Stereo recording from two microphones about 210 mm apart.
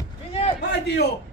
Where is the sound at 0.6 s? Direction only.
50° left (ahead or behind).